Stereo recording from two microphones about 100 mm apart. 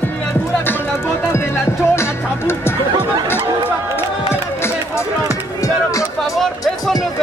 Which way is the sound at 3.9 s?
25° left (ahead or behind).